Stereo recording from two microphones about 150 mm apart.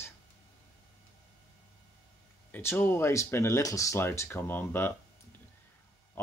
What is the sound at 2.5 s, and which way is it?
Speech, 15° left (ahead or behind).